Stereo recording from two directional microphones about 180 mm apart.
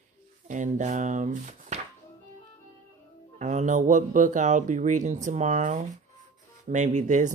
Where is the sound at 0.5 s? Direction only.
45° right (ahead or behind).